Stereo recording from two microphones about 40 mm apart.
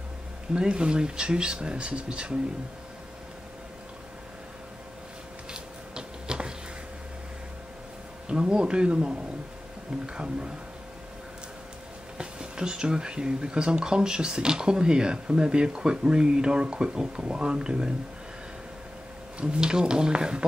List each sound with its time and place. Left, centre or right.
0.6 s speech: right
5.5 s a sound: centre
8.3 s speech: right
12.2 s speech: right
19.6 s speech: centre